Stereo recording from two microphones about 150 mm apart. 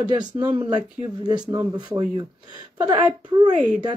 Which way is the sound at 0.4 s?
30° right (ahead or behind).